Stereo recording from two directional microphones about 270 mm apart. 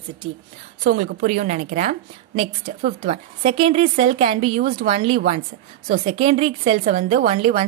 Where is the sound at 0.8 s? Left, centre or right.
Right.